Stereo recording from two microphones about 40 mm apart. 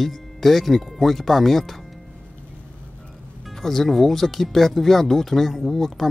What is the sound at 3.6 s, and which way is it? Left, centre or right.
Speech, centre.